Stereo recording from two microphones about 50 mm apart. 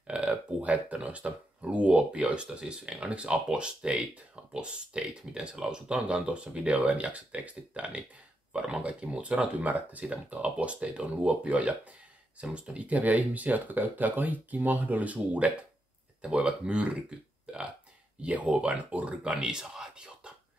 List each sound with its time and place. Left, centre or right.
0.0 s speech: right
18.2 s speech: right